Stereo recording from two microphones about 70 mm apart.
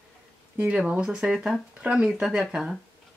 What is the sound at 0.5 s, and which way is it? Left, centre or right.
Speech, centre.